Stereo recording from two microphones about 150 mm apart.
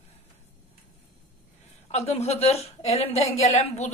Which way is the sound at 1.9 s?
45° left (ahead or behind).